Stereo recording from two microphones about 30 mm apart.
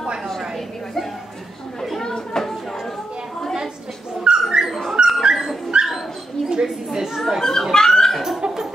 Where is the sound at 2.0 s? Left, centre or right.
Left.